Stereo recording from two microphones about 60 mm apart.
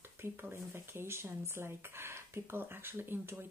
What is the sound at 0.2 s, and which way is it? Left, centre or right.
A woman's voice, right.